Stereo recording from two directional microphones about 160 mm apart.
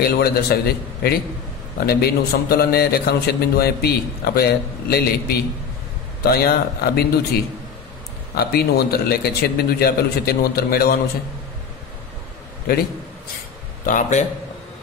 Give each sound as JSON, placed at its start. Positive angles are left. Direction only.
{"t": 0.0, "sound": "a man's voice", "side_deg": 80}
{"t": 13.8, "sound": "a man's voice", "side_deg": 55}